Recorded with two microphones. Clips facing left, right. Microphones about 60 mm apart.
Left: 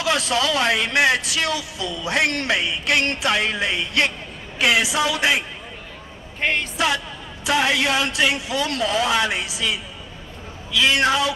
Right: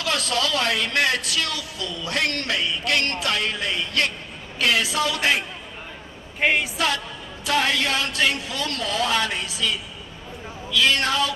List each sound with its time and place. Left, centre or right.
0.0 s speech: centre
6.4 s a woman's voice: centre
7.4 s speech: centre